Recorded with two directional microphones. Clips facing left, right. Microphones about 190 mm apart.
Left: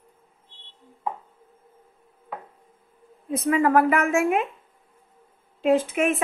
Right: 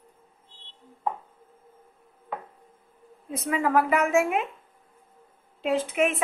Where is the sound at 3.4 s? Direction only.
50° left (ahead or behind).